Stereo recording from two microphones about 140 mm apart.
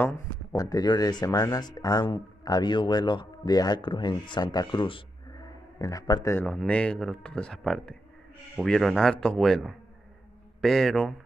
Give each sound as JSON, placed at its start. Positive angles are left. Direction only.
{"t": 0.6, "sound": "speech", "side_deg": 25}
{"t": 5.8, "sound": "a man's voice", "side_deg": 25}
{"t": 6.3, "sound": "speech", "side_deg": 10}